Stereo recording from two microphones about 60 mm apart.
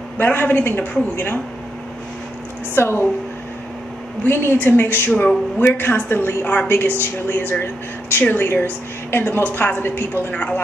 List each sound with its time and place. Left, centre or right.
0.2 s speech: left
2.7 s speech: left
4.3 s speech: left
10.3 s speech: left